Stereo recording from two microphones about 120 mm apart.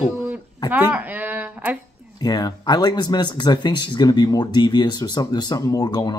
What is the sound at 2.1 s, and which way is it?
Speech, 35° left (ahead or behind).